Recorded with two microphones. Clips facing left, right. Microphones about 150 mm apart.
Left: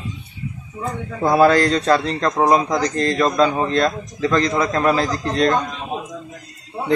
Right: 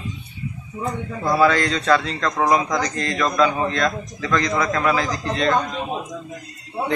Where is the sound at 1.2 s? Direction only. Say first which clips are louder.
Left 4 dB; 55° left (ahead or behind).